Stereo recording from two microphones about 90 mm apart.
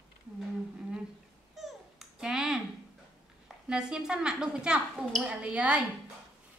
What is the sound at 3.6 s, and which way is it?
A woman's voice, 10° right (ahead or behind).